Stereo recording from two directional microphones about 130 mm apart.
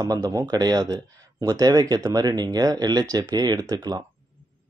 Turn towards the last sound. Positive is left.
turn(degrees=-30)  # may be behind; listen again after turning